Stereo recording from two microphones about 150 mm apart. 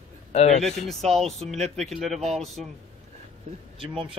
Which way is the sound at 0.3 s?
45° left (ahead or behind).